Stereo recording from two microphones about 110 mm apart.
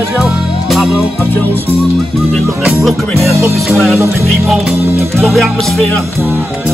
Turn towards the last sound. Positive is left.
turn(degrees=0)  # may be behind; listen again after turning